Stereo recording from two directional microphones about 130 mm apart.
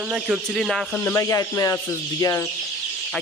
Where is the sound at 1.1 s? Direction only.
20° left (ahead or behind).